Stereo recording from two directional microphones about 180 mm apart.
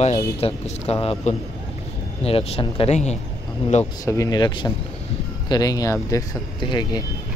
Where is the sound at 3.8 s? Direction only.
15° left (ahead or behind).